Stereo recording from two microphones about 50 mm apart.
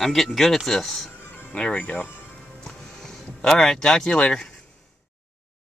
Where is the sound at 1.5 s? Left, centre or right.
Centre.